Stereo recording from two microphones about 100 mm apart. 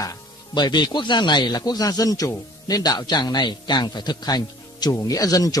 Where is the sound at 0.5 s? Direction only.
45° left (ahead or behind).